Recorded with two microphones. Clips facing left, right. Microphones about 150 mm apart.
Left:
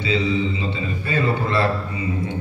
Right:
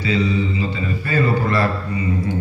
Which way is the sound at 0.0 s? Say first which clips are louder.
Right 1 dB; 25° left (ahead or behind).